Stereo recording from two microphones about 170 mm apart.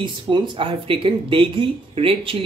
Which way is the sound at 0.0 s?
25° right (ahead or behind).